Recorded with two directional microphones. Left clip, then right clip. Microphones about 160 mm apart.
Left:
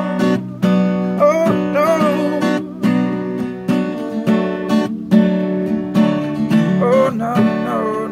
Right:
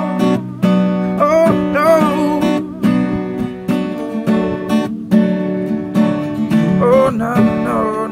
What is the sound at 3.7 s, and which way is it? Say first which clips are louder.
Music: even; 20° left (ahead or behind).